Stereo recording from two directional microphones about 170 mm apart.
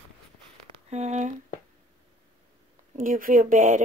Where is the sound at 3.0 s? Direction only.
55° right (ahead or behind).